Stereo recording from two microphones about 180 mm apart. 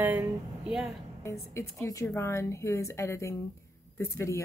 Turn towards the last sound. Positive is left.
turn(degrees=15)  # may be behind; listen again after turning